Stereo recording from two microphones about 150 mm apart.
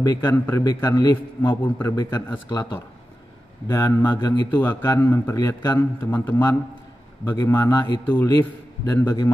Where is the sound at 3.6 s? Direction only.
25° left (ahead or behind).